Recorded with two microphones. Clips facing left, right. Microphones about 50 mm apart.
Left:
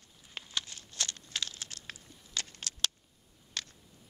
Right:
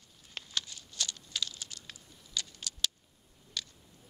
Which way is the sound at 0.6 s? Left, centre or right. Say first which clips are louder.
Even; left.